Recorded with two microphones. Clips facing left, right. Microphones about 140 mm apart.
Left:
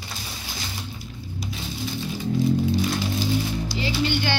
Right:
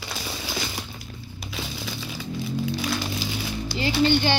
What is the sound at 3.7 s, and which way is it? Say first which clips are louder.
Music: right 6 dB; 25° right (ahead or behind).